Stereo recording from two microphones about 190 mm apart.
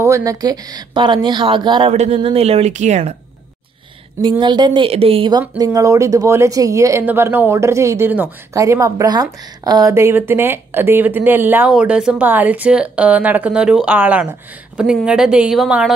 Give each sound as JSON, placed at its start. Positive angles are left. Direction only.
{"t": 0.0, "sound": "speech", "side_deg": -15}
{"t": 4.2, "sound": "a woman's voice", "side_deg": -25}